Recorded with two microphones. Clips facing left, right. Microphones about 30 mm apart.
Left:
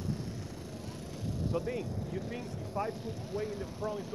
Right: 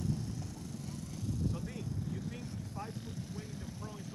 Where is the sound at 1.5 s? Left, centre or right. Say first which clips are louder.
Left 7 dB; left.